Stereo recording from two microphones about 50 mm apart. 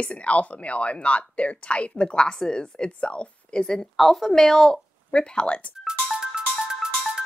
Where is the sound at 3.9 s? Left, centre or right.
Centre.